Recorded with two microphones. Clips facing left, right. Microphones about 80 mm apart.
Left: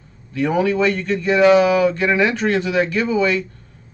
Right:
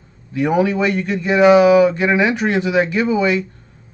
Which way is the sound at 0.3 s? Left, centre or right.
Centre.